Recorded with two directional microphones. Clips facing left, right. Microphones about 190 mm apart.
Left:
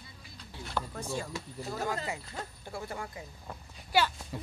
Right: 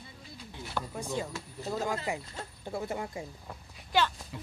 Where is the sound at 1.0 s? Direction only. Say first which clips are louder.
Right 2 dB; 15° right (ahead or behind).